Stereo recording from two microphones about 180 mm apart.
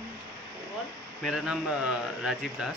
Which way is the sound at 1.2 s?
Centre (ahead or behind).